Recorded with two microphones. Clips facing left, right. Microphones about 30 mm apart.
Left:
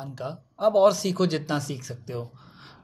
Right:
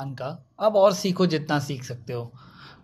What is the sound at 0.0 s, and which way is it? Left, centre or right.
Speech, right.